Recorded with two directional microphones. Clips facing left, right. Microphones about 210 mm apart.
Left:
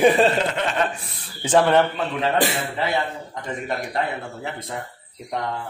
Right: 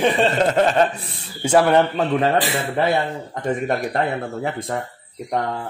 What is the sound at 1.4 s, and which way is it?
Speech, 10° right (ahead or behind).